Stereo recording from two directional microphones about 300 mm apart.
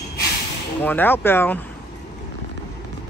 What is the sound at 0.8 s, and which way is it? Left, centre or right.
Speech, centre.